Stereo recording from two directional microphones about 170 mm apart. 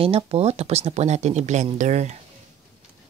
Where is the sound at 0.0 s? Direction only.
35° right (ahead or behind).